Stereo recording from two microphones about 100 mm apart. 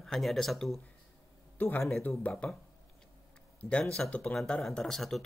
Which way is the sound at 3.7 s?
5° left (ahead or behind).